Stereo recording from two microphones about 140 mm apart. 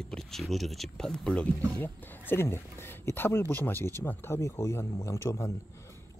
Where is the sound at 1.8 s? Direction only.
15° left (ahead or behind).